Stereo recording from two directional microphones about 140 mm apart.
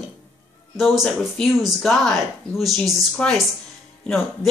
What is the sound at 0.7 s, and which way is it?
Speech, centre (ahead or behind).